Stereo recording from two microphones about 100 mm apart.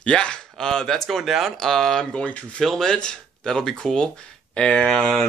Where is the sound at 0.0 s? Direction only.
10° left (ahead or behind).